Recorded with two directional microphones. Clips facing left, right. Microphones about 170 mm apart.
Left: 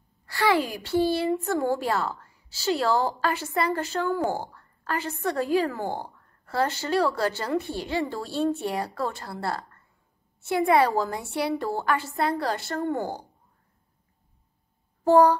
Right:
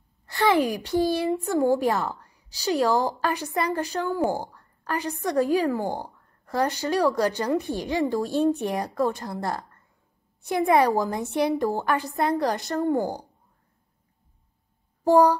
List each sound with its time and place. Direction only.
0.3 s a woman's voice: 20° right (ahead or behind)
15.0 s a woman's voice: 10° right (ahead or behind)